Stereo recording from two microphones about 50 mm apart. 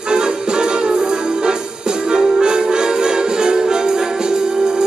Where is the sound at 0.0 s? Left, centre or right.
Centre.